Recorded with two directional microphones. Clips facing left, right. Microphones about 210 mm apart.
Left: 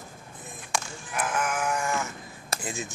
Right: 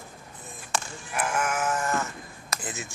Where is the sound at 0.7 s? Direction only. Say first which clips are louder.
Right 1 dB; 10° right (ahead or behind).